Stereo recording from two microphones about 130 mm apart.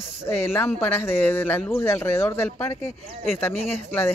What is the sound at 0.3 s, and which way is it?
Speech, 20° left (ahead or behind).